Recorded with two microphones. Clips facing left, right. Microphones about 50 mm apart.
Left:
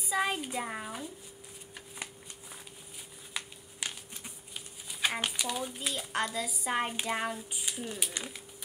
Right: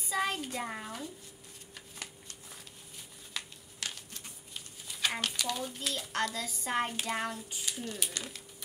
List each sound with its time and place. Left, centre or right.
0.0 s speech: centre
2.0 s shuffling cards: centre
3.3 s a sound: centre